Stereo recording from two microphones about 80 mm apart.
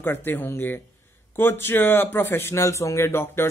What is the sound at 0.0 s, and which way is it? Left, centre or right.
Speech, left.